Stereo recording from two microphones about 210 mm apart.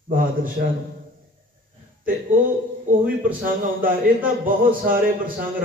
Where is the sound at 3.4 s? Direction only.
40° right (ahead or behind).